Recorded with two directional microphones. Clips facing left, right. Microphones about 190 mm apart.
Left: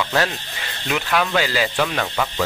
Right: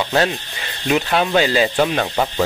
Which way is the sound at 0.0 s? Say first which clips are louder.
Right 3 dB; 25° right (ahead or behind).